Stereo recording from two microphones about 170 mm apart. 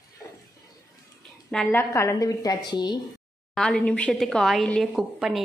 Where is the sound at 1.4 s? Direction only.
5° left (ahead or behind).